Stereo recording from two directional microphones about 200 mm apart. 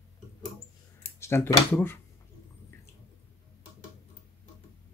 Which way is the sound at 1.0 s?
10° left (ahead or behind).